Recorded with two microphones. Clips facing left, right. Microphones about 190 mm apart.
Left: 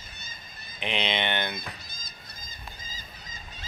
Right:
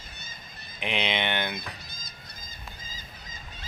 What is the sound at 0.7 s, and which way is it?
Speech, 10° right (ahead or behind).